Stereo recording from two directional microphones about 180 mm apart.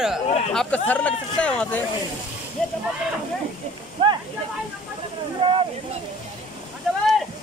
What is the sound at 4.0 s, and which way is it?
Speech, 25° right (ahead or behind).